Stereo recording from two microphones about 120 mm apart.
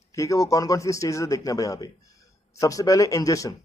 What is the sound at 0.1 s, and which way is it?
Speech, 25° left (ahead or behind).